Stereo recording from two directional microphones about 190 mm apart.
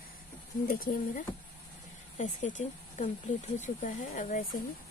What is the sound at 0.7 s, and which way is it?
Speech, 45° left (ahead or behind).